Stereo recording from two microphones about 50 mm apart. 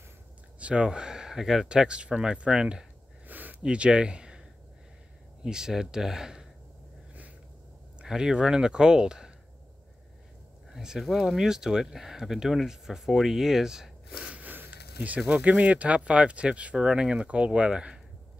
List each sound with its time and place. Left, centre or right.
0.6 s speech: right
1.7 s speech: centre
3.3 s a sound: right
3.6 s speech: centre
5.4 s speech: centre
8.0 s speech: centre
10.7 s speech: centre
14.2 s a sound: right
15.0 s speech: right